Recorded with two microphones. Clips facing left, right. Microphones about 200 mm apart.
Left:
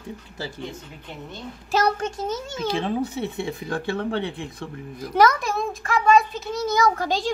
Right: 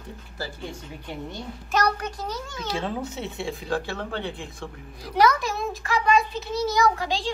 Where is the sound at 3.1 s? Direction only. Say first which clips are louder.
Left 3 dB; 60° left (ahead or behind).